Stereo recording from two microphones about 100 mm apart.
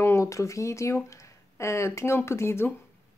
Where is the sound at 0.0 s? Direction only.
30° left (ahead or behind).